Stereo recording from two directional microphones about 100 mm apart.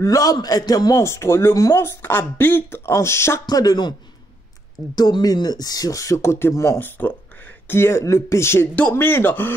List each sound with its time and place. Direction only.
0.0 s a man's voice: 35° left (ahead or behind)
3.4 s speech: 40° left (ahead or behind)
4.9 s speech: 40° left (ahead or behind)
6.8 s a man's voice: 15° left (ahead or behind)